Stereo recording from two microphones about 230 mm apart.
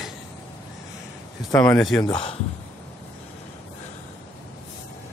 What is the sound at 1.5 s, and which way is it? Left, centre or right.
Speech, centre.